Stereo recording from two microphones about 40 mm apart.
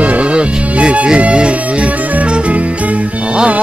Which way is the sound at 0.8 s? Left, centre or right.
Right.